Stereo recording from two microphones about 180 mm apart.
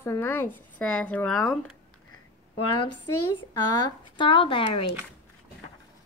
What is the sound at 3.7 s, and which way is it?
Speech, 25° left (ahead or behind).